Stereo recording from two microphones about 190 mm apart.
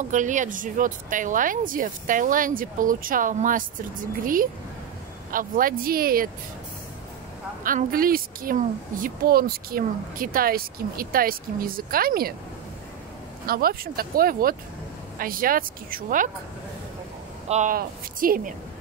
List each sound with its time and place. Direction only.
0.1 s a woman's voice: 40° right (ahead or behind)
7.6 s a woman's voice: 45° right (ahead or behind)
13.5 s a woman's voice: 50° right (ahead or behind)
17.5 s a woman's voice: 40° right (ahead or behind)